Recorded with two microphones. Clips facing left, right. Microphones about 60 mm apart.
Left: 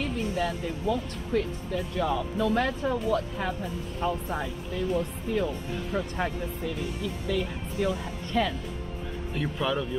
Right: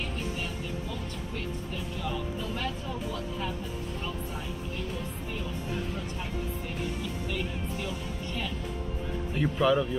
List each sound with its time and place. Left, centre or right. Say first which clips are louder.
0.0 s speech: left 6 dB; left
5.9 s speech: left 7 dB; left
7.0 s speech: left 4 dB; left
9.3 s speech: right 4 dB; centre